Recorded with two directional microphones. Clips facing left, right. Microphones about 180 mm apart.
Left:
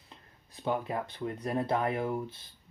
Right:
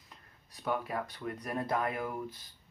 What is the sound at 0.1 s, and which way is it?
Speech, 25° left (ahead or behind).